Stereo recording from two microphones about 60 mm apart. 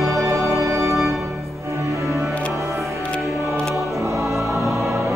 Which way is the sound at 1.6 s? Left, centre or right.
Right.